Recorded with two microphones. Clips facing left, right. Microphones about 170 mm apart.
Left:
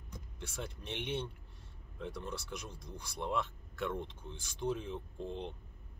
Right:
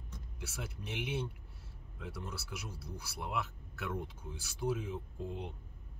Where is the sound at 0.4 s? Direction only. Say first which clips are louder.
Left 1 dB; 5° right (ahead or behind).